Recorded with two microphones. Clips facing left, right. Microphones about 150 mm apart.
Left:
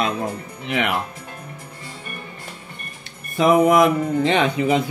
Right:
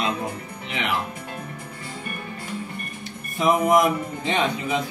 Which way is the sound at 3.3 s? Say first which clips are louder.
Left 4 dB; 75° left (ahead or behind).